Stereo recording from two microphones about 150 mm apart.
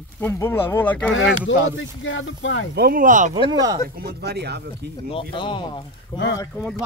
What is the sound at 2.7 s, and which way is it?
Speech, 85° right.